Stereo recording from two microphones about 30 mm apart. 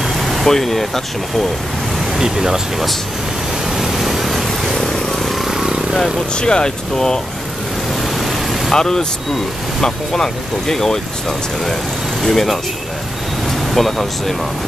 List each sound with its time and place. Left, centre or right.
0.2 s vehicle: centre
0.5 s speech: centre
2.1 s speech: centre
3.7 s vehicle: centre
4.7 s vehicle: centre
5.4 s vehicle: centre
6.3 s speech: left
8.7 s speech: centre
12.2 s speech: centre
13.7 s speech: centre